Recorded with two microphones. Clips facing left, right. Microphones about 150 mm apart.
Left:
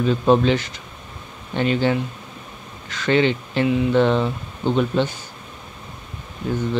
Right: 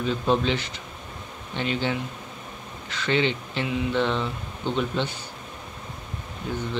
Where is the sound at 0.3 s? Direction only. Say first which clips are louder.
Left 7 dB; 50° left (ahead or behind).